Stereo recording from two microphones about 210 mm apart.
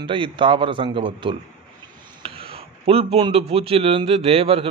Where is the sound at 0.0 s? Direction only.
25° right (ahead or behind).